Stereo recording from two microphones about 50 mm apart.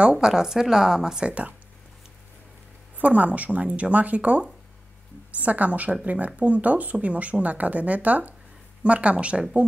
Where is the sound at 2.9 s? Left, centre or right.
Right.